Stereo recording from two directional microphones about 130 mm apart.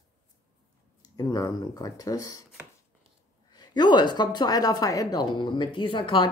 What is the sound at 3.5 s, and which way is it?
Speech, 35° left (ahead or behind).